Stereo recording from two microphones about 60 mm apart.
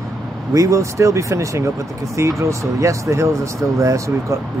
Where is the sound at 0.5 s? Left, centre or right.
Right.